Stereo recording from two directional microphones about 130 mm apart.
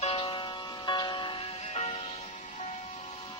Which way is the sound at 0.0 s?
45° left (ahead or behind).